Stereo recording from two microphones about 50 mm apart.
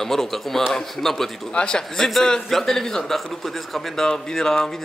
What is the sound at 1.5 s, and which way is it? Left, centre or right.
A man's voice, centre.